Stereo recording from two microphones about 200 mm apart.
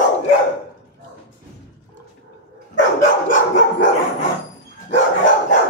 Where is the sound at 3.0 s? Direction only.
40° left (ahead or behind).